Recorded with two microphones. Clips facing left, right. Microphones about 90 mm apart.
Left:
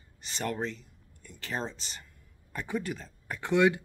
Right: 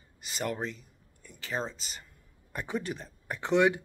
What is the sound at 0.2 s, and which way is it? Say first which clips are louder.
Speech: even; 10° right (ahead or behind).